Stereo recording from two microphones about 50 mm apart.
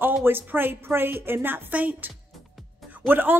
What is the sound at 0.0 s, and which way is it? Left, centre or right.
Speech, right.